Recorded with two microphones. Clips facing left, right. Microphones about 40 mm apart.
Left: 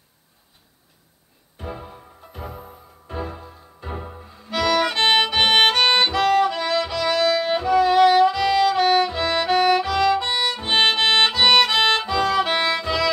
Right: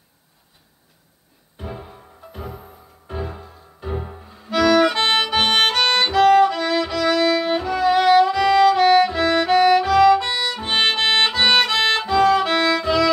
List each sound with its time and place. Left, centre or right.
1.6 s music: centre
5.0 s music: centre
6.4 s music: centre
10.2 s music: centre
10.6 s music: centre
11.7 s music: centre
12.4 s violin: centre
12.8 s violin: centre